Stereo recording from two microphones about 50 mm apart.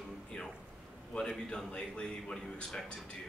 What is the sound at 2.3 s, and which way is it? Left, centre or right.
Speech, centre.